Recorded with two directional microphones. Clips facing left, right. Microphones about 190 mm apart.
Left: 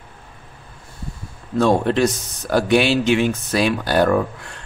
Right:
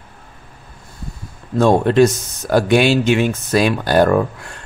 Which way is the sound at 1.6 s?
45° right (ahead or behind).